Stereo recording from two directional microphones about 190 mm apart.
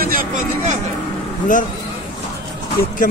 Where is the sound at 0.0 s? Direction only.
50° right (ahead or behind).